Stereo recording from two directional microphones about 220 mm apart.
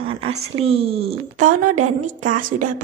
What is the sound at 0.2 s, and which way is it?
A woman's voice, 25° right (ahead or behind).